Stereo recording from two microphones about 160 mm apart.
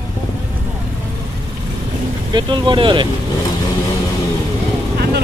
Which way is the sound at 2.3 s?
30° right (ahead or behind).